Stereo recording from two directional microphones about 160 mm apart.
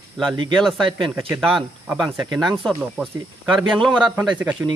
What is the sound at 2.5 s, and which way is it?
Speech, centre (ahead or behind).